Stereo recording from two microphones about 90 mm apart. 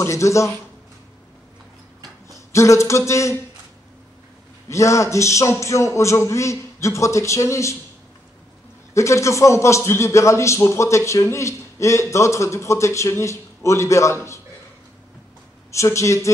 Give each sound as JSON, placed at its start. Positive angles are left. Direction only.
{"t": 0.0, "sound": "a man's voice", "side_deg": 35}
{"t": 2.5, "sound": "a man's voice", "side_deg": 35}
{"t": 4.6, "sound": "a man's voice", "side_deg": 35}
{"t": 8.9, "sound": "a man's voice", "side_deg": 35}
{"t": 15.7, "sound": "a man's voice", "side_deg": 35}